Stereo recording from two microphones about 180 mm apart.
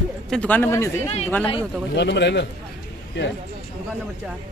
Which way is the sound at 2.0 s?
75° left (ahead or behind).